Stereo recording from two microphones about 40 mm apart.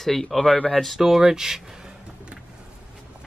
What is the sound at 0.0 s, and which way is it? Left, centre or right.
Speech, centre.